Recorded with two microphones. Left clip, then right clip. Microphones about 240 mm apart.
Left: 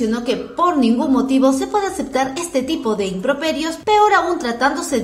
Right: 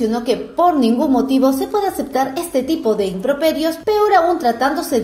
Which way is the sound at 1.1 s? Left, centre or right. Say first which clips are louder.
Even; left.